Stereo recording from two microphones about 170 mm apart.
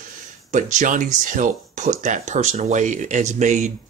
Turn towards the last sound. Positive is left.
turn(degrees=-45)  # may be behind; listen again after turning